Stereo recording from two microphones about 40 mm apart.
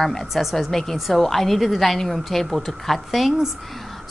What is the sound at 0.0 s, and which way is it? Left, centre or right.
Speech, centre.